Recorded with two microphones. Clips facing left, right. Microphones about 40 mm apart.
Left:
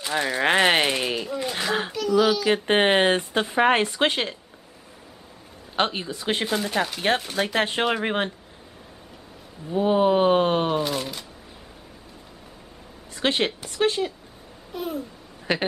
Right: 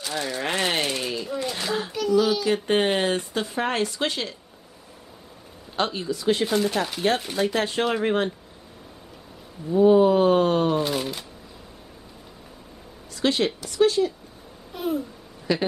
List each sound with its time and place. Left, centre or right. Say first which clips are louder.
0.0 s speech: left 5 dB; left
1.4 s a child's voice: left 1 dB; centre
1.9 s a sound: right 1 dB; centre
2.4 s speech: left 2 dB; left
5.8 s speech: left 1 dB; left
6.4 s speech: right 2 dB; centre
7.3 s speech: even; left
7.8 s a sound: right 1 dB; left
9.7 s a sound: right 4 dB; left
10.8 s speech: right 1 dB; centre
13.1 s speech: right 1 dB; left
14.7 s babbling: right 3 dB; centre
15.5 s speech: right 1 dB; left